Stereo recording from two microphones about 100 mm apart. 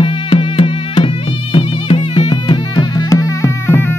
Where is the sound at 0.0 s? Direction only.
60° left (ahead or behind).